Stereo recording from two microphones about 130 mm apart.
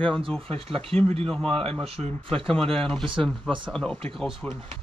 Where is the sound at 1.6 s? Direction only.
50° right (ahead or behind).